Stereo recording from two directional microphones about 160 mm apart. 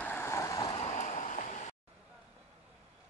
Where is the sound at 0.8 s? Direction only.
45° left (ahead or behind).